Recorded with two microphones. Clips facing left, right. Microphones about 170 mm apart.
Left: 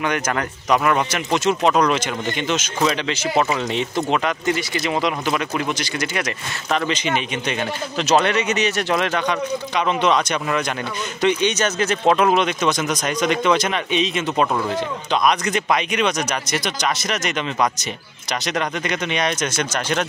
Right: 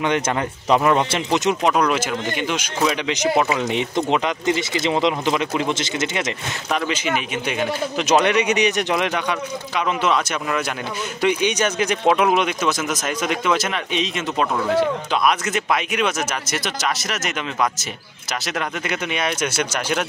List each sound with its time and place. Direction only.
0.7 s speech: 25° right (ahead or behind)
6.7 s speech: 10° right (ahead or behind)
18.9 s speech: 5° right (ahead or behind)